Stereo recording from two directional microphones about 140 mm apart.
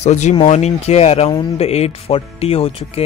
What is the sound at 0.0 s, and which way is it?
Speech, 55° left (ahead or behind).